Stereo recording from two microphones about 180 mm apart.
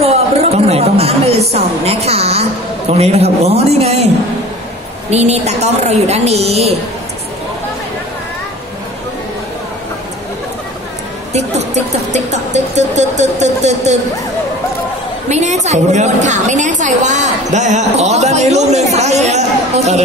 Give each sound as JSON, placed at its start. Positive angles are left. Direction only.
{"t": 0.0, "sound": "a woman's voice", "side_deg": -35}
{"t": 5.1, "sound": "a woman's voice", "side_deg": -35}
{"t": 11.3, "sound": "music", "side_deg": -40}
{"t": 15.2, "sound": "a woman's voice", "side_deg": -40}